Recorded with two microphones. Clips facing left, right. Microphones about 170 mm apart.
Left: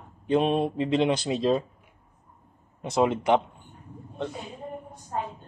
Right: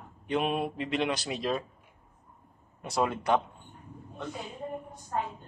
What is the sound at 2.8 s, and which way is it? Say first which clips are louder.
Speech: left 6 dB; 20° left (ahead or behind).